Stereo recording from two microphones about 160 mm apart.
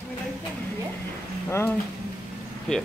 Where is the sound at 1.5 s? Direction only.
15° left (ahead or behind).